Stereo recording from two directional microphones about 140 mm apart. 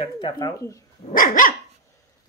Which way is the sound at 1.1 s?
75° left (ahead or behind).